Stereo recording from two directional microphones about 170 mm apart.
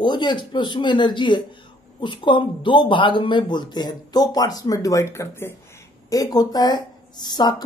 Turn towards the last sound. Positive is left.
turn(degrees=25)  # may be behind; listen again after turning